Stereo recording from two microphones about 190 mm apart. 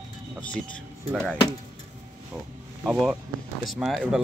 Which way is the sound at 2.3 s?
5° right (ahead or behind).